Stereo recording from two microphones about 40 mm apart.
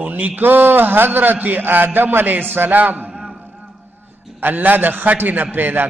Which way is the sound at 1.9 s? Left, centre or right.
Right.